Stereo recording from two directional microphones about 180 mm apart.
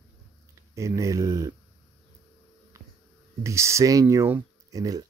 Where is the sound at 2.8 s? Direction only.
15° right (ahead or behind).